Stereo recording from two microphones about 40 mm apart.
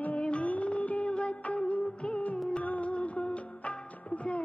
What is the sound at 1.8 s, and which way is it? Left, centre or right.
Music of bollywood, left.